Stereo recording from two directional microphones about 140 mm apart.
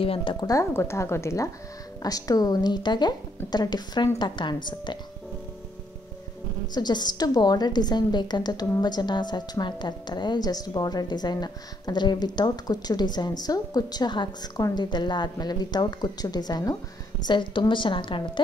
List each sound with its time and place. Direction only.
0.0 s a woman's voice: 40° left (ahead or behind)
0.5 s a woman's voice: 20° left (ahead or behind)
6.7 s a woman's voice: 30° left (ahead or behind)